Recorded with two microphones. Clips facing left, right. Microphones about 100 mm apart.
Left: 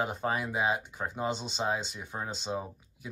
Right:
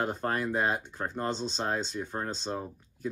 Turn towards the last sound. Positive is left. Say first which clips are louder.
# right 7 dB
turn(degrees=10)  # may be behind; listen again after turning